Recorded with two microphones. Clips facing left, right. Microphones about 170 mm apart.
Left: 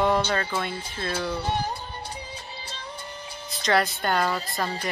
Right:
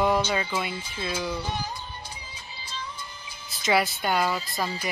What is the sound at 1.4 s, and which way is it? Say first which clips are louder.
Music: left 5 dB; 60° left (ahead or behind).